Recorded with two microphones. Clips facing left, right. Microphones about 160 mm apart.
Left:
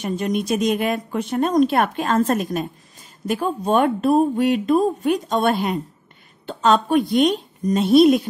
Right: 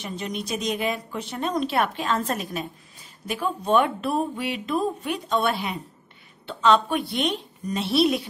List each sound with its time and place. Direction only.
0.0 s speech: 50° left (ahead or behind)